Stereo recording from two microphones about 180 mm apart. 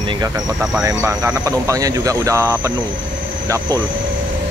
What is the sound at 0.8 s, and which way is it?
Speech, 15° right (ahead or behind).